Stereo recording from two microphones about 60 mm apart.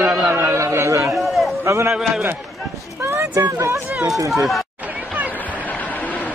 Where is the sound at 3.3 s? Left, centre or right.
Right.